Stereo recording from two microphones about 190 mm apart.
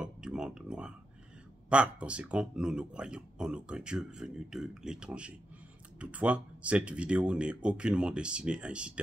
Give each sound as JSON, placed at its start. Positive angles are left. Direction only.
{"t": 0.0, "sound": "speech", "side_deg": -5}